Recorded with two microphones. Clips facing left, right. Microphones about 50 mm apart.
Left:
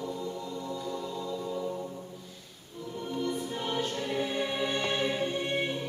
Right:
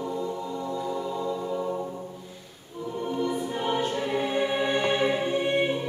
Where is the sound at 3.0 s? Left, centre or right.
Centre.